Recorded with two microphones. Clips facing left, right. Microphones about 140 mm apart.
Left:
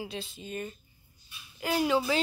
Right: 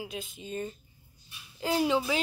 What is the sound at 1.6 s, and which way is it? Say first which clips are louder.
Speech: even; 25° right (ahead or behind).